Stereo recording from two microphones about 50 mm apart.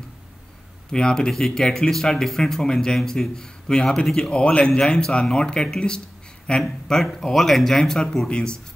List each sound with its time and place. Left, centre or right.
0.9 s speech: centre
4.3 s speech: left